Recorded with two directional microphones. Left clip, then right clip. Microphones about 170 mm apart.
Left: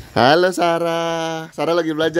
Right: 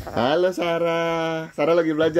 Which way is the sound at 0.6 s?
40° left (ahead or behind).